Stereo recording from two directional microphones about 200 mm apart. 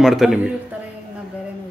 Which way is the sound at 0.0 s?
Centre (ahead or behind).